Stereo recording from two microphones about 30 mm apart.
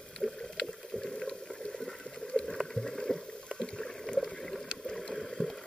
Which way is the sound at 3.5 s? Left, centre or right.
Left.